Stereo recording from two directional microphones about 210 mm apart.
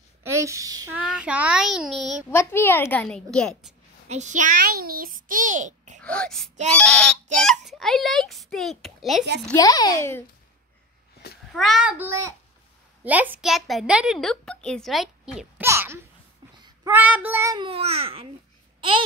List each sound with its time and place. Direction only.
0.2 s speech: 15° right (ahead or behind)
0.9 s speech: 5° right (ahead or behind)
2.3 s speech: 10° left (ahead or behind)
4.1 s a child's voice: 35° right (ahead or behind)
6.0 s speech: 5° left (ahead or behind)
9.5 s a child's voice: 15° left (ahead or behind)
11.5 s a woman's voice: centre (ahead or behind); by 18.3 s 25° right (ahead or behind)
18.8 s babbling: 25° right (ahead or behind)